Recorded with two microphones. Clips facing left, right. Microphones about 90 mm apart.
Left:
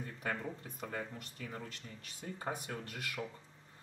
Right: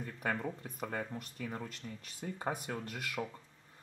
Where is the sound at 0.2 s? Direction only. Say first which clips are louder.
Right 3 dB; 10° right (ahead or behind).